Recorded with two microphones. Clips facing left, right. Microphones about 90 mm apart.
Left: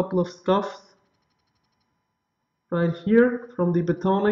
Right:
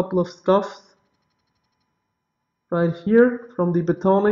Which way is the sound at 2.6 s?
15° right (ahead or behind).